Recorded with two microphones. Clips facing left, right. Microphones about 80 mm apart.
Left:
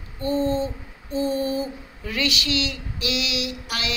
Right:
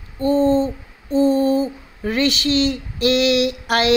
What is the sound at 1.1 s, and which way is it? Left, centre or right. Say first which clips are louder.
A woman's voice: right 8 dB; right.